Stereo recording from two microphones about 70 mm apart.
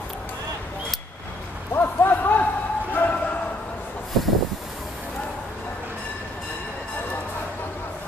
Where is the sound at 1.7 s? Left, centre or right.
Left.